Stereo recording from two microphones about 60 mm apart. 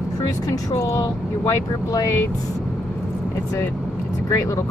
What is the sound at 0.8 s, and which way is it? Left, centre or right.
Speech, left.